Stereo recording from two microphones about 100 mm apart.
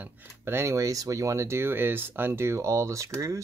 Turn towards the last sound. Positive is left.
turn(degrees=-30)  # may be behind; listen again after turning